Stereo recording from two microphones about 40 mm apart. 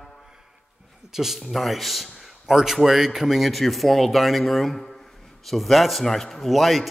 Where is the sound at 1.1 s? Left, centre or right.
Centre.